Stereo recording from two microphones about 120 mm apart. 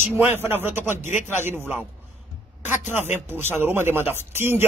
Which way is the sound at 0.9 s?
90° left.